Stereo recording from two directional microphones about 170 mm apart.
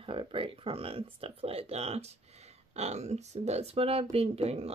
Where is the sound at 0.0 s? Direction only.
30° right (ahead or behind).